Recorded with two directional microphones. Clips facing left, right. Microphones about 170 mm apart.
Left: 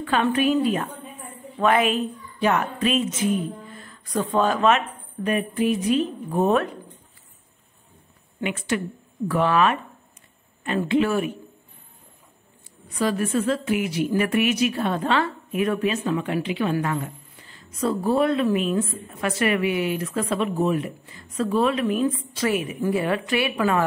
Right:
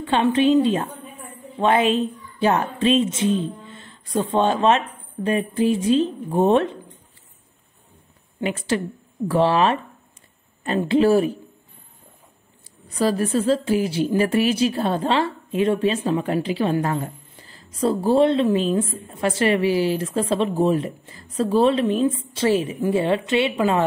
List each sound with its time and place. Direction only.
0.0 s a woman's voice: 25° right (ahead or behind)
8.4 s a woman's voice: 35° right (ahead or behind)
10.8 s a woman's voice: 35° right (ahead or behind)
12.9 s speech: 35° right (ahead or behind)